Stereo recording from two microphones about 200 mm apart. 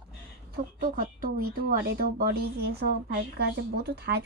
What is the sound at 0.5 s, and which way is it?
Speech, 45° right (ahead or behind).